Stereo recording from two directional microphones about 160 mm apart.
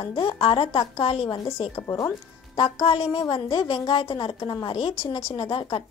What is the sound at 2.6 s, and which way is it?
A woman's voice, 35° left (ahead or behind).